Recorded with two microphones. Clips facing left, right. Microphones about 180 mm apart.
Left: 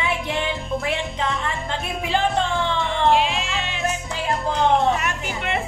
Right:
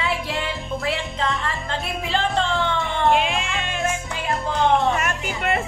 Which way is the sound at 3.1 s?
55° right (ahead or behind).